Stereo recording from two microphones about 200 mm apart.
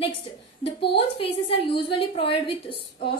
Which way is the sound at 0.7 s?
30° left (ahead or behind).